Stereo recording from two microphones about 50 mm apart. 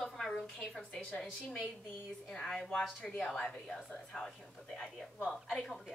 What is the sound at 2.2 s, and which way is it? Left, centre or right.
Speech, centre.